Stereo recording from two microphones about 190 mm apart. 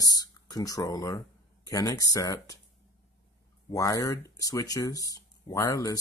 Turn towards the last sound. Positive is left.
turn(degrees=20)  # may be behind; listen again after turning